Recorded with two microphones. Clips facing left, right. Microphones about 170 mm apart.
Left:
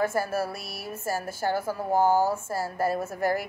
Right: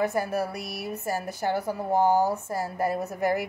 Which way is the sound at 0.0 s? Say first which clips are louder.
Even; 15° right (ahead or behind).